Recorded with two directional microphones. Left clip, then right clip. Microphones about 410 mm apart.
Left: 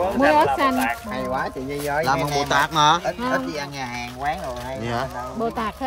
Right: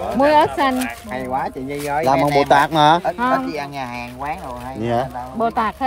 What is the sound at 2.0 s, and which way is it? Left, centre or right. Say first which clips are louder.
Speech: right 8 dB; centre.